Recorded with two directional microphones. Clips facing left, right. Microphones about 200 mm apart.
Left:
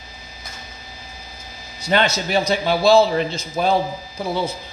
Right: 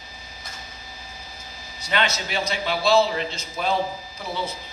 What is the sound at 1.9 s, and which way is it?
Speech, 40° left (ahead or behind).